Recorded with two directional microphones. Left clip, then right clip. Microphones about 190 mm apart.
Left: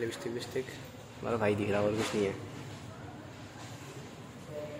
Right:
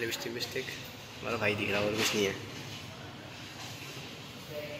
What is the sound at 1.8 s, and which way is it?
Speech, 10° left (ahead or behind).